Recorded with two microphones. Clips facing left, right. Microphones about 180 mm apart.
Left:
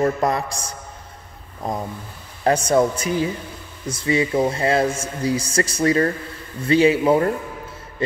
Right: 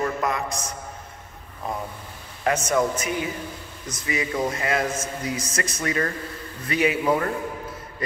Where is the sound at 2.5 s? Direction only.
35° left (ahead or behind).